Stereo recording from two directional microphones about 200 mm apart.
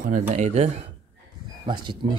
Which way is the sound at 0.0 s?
35° right (ahead or behind).